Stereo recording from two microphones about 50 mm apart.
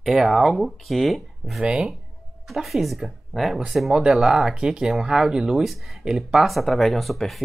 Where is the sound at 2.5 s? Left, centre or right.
Centre.